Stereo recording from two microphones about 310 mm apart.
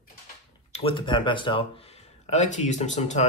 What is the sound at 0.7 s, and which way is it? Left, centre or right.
Speech, centre.